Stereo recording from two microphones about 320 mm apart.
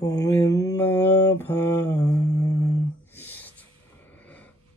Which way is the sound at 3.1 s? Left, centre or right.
Centre.